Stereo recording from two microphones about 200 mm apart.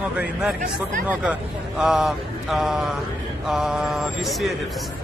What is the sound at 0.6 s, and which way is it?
Speech, 40° right (ahead or behind).